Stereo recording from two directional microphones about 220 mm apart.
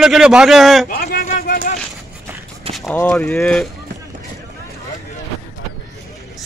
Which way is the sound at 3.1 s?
5° left (ahead or behind).